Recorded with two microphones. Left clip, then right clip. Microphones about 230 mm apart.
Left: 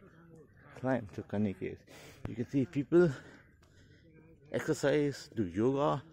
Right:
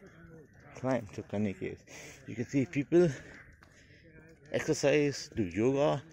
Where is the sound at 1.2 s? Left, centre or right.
Left.